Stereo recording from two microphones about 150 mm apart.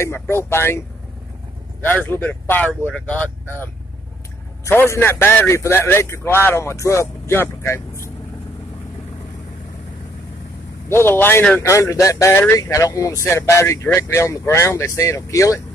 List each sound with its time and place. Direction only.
0.0 s a man's voice: 15° left (ahead or behind)
1.8 s a man's voice: 15° left (ahead or behind)
10.9 s speech: 15° left (ahead or behind)